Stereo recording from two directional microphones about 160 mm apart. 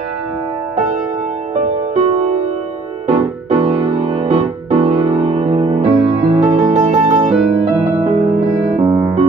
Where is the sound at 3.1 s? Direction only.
35° right (ahead or behind).